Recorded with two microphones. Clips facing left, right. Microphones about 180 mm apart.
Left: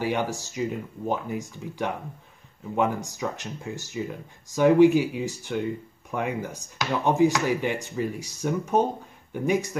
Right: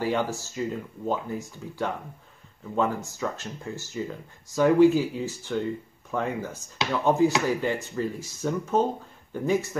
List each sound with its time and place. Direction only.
0.0 s speech: 15° left (ahead or behind)